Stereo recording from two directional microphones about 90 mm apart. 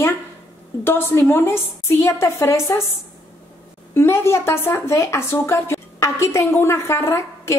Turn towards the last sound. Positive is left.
turn(degrees=30)  # may be behind; listen again after turning